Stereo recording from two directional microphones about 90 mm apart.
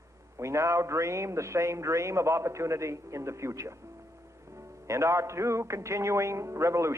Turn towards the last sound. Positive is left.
turn(degrees=-30)  # may be behind; listen again after turning